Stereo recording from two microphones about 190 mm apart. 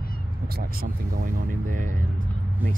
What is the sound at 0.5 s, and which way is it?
Speech, 50° right (ahead or behind).